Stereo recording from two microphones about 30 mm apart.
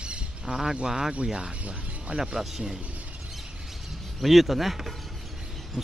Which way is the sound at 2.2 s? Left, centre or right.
Centre.